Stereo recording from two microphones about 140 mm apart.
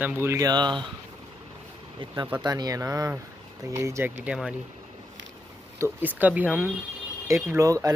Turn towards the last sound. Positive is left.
turn(degrees=-25)  # may be behind; listen again after turning